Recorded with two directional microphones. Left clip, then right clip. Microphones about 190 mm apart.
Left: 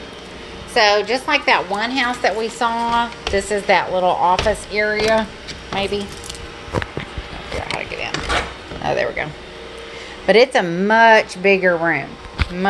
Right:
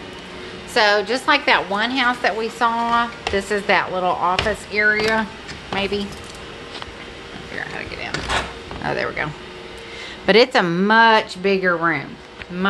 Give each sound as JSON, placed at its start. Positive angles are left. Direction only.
{"t": 0.7, "sound": "a woman's voice", "side_deg": -90}
{"t": 1.1, "sound": "a woman's voice", "side_deg": -15}
{"t": 8.8, "sound": "a man's voice", "side_deg": -25}
{"t": 10.9, "sound": "a woman's voice", "side_deg": -15}